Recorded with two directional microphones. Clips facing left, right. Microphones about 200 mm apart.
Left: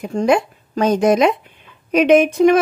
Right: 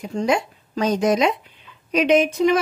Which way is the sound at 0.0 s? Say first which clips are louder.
Left 5 dB; 55° left (ahead or behind).